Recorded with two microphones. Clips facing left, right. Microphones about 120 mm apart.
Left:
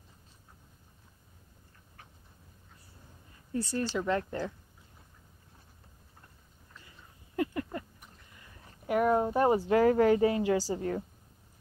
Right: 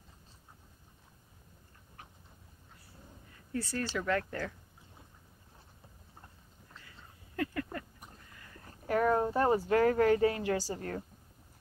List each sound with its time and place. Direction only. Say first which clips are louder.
3.5 s speech: left 3 dB; 20° left (ahead or behind)
7.3 s a sound: left 3 dB; 20° left (ahead or behind)
9.6 s speech: left 3 dB; 20° left (ahead or behind)